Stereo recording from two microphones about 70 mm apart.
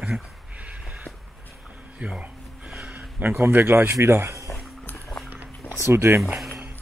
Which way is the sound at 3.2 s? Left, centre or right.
Right.